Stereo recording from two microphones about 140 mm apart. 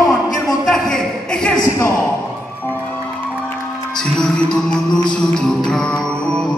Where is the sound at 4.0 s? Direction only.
5° left (ahead or behind).